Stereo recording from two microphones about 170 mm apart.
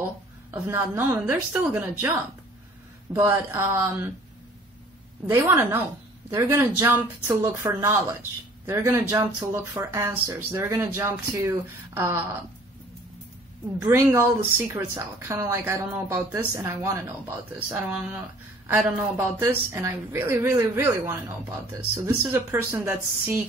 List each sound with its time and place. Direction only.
0.5 s speech: 15° right (ahead or behind)
5.2 s speech: 15° right (ahead or behind)
13.7 s speech: 15° right (ahead or behind)
18.7 s speech: 15° right (ahead or behind)